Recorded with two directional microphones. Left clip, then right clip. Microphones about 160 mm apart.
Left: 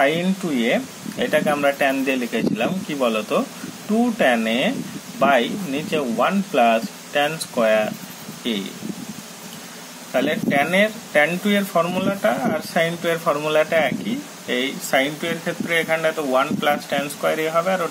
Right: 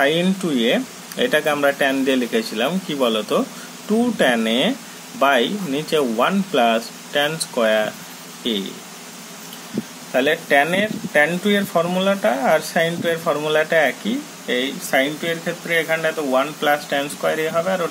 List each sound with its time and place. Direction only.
0.0 s speech: 20° right (ahead or behind)
10.1 s speech: 15° right (ahead or behind)